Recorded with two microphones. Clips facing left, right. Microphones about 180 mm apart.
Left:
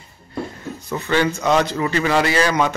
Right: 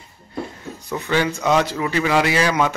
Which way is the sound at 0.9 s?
10° right (ahead or behind).